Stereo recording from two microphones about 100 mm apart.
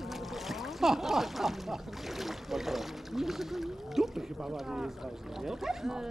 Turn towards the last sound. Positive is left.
turn(degrees=-5)  # may be behind; listen again after turning